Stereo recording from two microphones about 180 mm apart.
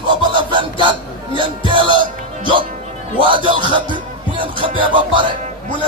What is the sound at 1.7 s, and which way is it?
Speech, 25° right (ahead or behind).